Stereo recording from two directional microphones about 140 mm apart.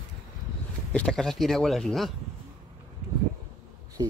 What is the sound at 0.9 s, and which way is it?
Speech, 5° left (ahead or behind).